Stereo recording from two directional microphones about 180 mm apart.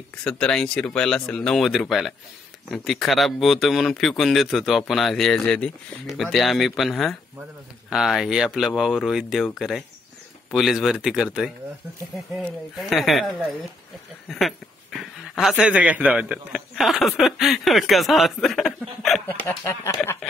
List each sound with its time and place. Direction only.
0.2 s speech: 5° left (ahead or behind)
12.4 s speech: centre (ahead or behind)
14.3 s speech: centre (ahead or behind)
19.4 s speech: 15° left (ahead or behind)